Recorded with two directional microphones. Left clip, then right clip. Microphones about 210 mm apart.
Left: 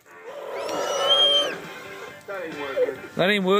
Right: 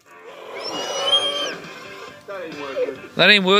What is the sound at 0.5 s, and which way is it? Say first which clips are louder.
Music: even; 35° right (ahead or behind).